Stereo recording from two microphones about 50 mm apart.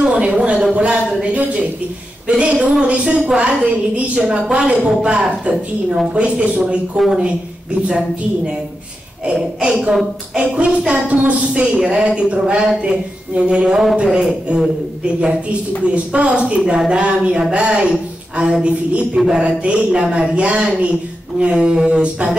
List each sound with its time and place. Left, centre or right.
0.0 s a sound: right
2.2 s a woman's voice: right
9.6 s a man's voice: centre
15.8 s a woman's voice: right